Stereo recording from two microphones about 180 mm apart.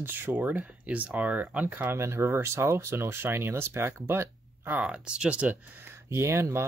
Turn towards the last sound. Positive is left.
turn(degrees=-15)  # may be behind; listen again after turning